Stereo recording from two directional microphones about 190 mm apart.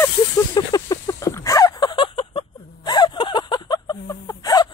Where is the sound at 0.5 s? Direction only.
20° left (ahead or behind).